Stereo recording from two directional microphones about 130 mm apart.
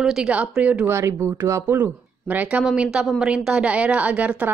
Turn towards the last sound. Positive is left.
turn(degrees=-10)  # may be behind; listen again after turning